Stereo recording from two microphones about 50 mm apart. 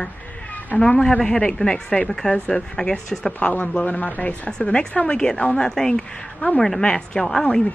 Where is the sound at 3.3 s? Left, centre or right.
Left.